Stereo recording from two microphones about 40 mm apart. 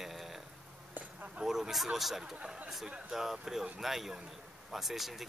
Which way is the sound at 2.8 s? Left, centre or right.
Right.